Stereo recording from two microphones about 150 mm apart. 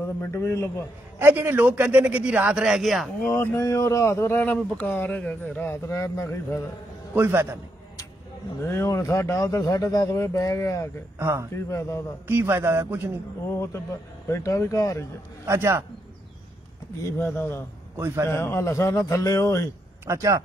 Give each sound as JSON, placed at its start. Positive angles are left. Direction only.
{"t": 0.2, "sound": "speech", "side_deg": 15}
{"t": 1.2, "sound": "a man's voice", "side_deg": -15}
{"t": 3.3, "sound": "speech", "side_deg": 20}
{"t": 7.2, "sound": "a man's voice", "side_deg": -15}
{"t": 8.5, "sound": "a man's voice", "side_deg": 15}
{"t": 11.1, "sound": "a man's voice", "side_deg": -20}
{"t": 11.5, "sound": "speech", "side_deg": 20}
{"t": 12.3, "sound": "a man's voice", "side_deg": -15}
{"t": 14.3, "sound": "a man's voice", "side_deg": 20}
{"t": 15.4, "sound": "a man's voice", "side_deg": -20}
{"t": 17.2, "sound": "speech", "side_deg": 10}
{"t": 17.9, "sound": "a man's voice", "side_deg": -15}
{"t": 18.3, "sound": "a man's voice", "side_deg": 15}
{"t": 20.1, "sound": "a man's voice", "side_deg": -20}